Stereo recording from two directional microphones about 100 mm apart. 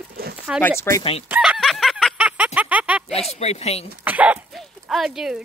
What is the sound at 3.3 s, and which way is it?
Speech, 90° left.